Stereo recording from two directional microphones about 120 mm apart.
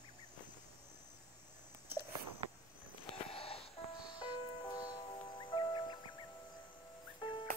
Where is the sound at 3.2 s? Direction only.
55° left (ahead or behind).